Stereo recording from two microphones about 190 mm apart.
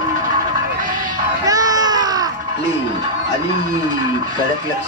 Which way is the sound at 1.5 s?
20° right (ahead or behind).